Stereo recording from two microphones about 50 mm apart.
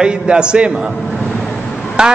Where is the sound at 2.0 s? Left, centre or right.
Centre.